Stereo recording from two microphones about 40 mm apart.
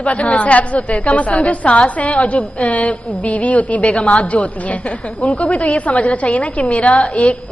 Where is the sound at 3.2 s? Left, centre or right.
Left.